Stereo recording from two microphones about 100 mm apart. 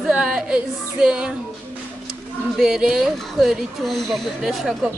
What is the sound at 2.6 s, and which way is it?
Speech, 5° right (ahead or behind).